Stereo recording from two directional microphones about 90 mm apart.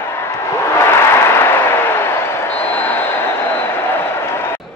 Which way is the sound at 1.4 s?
25° left (ahead or behind).